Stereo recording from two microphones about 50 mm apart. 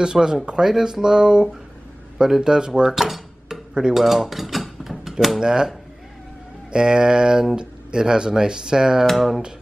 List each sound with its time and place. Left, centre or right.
0.0 s speech: centre
2.1 s dishes: centre
5.4 s speech: centre
6.7 s speech: centre
9.0 s speech: centre